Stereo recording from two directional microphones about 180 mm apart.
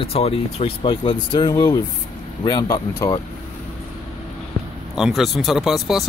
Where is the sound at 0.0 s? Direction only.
35° left (ahead or behind).